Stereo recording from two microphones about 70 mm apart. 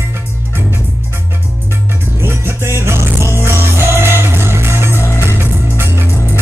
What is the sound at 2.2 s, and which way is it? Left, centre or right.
Music, right.